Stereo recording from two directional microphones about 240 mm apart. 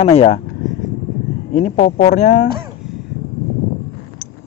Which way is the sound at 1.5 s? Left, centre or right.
Left.